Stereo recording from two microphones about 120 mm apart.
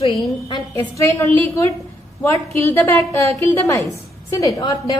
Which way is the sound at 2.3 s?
20° left (ahead or behind).